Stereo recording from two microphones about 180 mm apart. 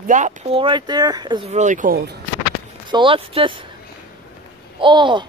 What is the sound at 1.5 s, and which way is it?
Speech, 40° right (ahead or behind).